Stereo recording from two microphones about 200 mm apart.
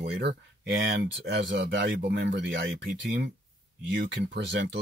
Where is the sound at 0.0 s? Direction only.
60° right (ahead or behind).